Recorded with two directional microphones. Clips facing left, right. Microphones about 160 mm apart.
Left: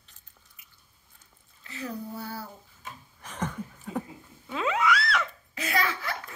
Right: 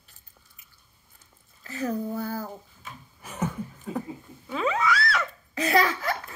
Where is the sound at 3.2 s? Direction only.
5° right (ahead or behind).